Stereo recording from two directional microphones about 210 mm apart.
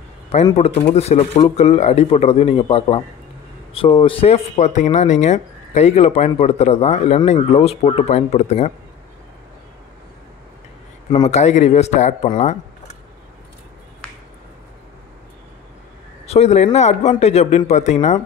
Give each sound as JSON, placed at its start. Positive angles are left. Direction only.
{"t": 0.6, "sound": "speech", "side_deg": 30}
{"t": 11.2, "sound": "speech", "side_deg": 35}
{"t": 16.3, "sound": "speech", "side_deg": 30}